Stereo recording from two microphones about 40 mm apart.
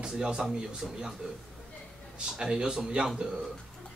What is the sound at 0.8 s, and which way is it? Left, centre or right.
Speech, centre.